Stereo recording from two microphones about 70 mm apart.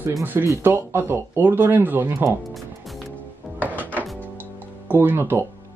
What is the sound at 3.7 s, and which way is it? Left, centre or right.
Music, right.